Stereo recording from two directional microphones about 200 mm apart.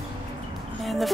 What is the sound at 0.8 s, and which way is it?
Speech, centre (ahead or behind).